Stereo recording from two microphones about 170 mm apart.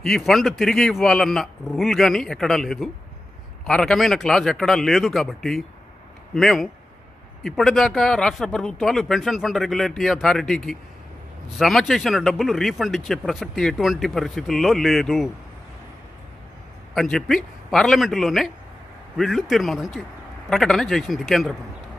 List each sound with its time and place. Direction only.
0.0 s speech: centre (ahead or behind)
16.9 s speech: centre (ahead or behind)